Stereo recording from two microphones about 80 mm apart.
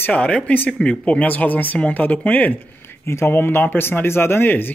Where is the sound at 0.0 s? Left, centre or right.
Centre.